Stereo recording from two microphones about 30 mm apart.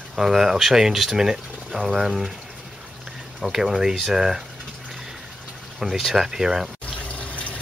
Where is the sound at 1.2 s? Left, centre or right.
Centre.